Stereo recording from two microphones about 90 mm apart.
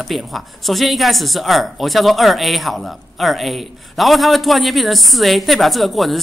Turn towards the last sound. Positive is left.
turn(degrees=0)  # may be behind; listen again after turning